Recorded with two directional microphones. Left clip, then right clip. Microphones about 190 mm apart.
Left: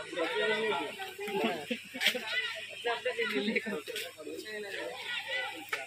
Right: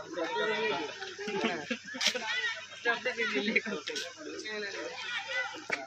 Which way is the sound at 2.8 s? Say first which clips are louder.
Right 2 dB; 10° left (ahead or behind).